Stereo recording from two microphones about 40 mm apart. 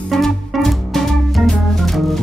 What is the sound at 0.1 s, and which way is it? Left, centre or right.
Music, centre.